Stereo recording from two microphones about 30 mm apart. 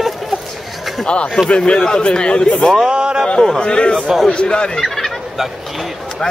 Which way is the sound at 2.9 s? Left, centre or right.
Right.